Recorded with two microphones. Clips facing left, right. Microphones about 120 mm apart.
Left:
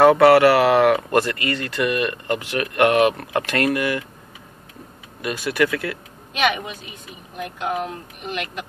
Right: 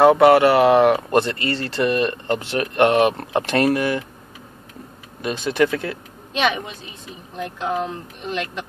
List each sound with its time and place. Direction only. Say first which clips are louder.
0.0 s speech: even; 20° right (ahead or behind)
5.2 s speech: right 2 dB; 25° right (ahead or behind)